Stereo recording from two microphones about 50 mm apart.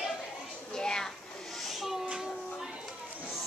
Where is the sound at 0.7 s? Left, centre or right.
Centre.